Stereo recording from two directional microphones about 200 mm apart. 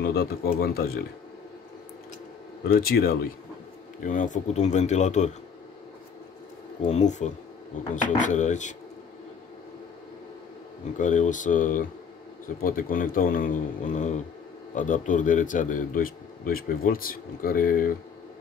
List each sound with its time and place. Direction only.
0.0 s a man's voice: 50° left (ahead or behind)
2.7 s a man's voice: 50° left (ahead or behind)
6.8 s speech: 35° left (ahead or behind)
11.0 s a man's voice: 40° left (ahead or behind)